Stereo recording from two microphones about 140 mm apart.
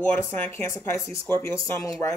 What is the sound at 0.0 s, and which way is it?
Speech, 15° left (ahead or behind).